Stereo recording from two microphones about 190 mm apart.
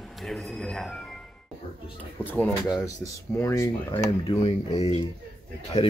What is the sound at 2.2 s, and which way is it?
Speech, 10° left (ahead or behind).